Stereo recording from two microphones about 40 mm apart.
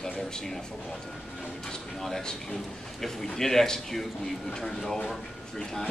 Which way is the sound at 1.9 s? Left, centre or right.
Centre.